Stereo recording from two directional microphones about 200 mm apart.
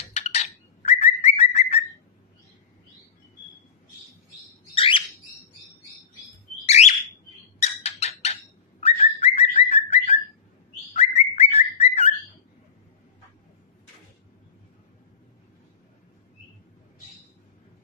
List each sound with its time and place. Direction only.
0.1 s bird: 35° left (ahead or behind)
4.7 s bird: 25° left (ahead or behind)
6.6 s bird: 30° left (ahead or behind)